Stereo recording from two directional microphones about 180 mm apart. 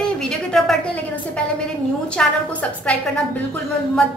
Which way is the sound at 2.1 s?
5° left (ahead or behind).